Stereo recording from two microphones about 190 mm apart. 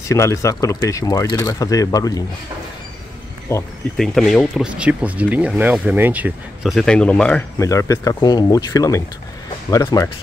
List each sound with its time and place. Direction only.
0.1 s speech: 15° left (ahead or behind)
3.9 s speech: centre (ahead or behind); by 10.0 s 15° left (ahead or behind)